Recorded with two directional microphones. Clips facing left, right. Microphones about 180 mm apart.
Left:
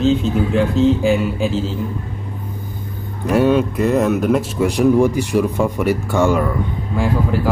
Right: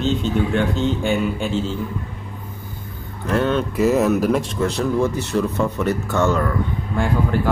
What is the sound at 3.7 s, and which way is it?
Speech, centre (ahead or behind).